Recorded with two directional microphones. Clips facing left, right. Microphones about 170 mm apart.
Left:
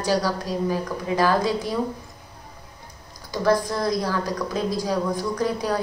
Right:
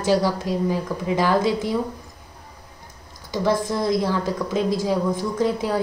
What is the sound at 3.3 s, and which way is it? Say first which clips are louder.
A woman's voice: even; 20° right (ahead or behind).